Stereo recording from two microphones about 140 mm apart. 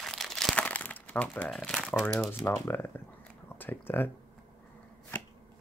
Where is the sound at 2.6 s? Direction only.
15° left (ahead or behind).